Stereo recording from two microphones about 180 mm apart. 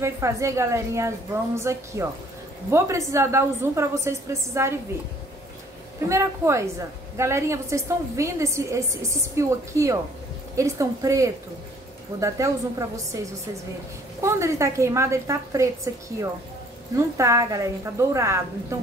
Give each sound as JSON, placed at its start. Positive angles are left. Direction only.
{"t": 0.0, "sound": "a woman's voice", "side_deg": -15}
{"t": 6.0, "sound": "a woman's voice", "side_deg": -15}